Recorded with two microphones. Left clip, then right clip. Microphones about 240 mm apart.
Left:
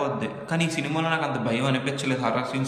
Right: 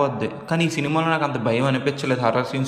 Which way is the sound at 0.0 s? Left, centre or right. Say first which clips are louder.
Right 5 dB; centre.